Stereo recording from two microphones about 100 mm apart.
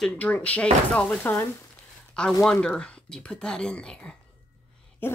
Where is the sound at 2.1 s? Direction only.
10° left (ahead or behind).